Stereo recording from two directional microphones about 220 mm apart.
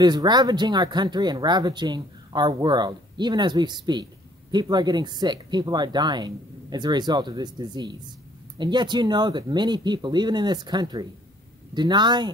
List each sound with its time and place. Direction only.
0.0 s speech: 20° right (ahead or behind)